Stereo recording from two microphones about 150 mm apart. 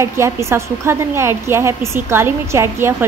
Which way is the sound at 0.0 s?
20° right (ahead or behind).